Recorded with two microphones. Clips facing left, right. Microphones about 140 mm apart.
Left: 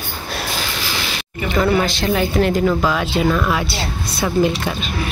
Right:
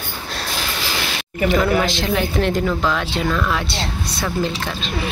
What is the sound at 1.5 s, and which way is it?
A woman's voice, centre (ahead or behind).